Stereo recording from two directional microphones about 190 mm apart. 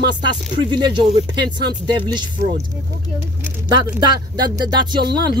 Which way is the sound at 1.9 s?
25° right (ahead or behind).